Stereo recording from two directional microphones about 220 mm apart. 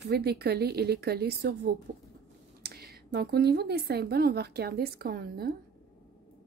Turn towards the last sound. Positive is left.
turn(degrees=-45)  # may be behind; listen again after turning